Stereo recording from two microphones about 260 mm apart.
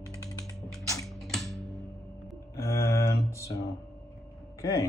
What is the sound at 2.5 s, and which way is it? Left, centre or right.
Mantra, centre.